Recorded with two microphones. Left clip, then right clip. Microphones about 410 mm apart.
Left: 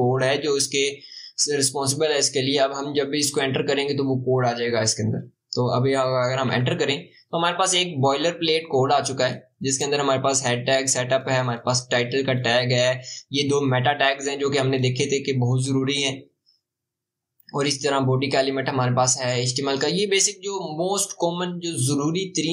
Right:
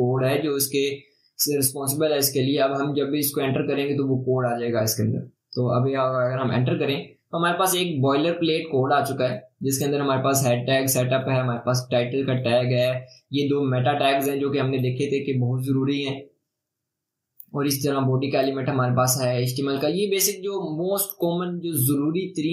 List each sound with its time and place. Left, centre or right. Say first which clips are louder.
0.1 s speech: left 2 dB; centre
2.0 s speech: right 1 dB; centre
17.6 s speech: left 2 dB; centre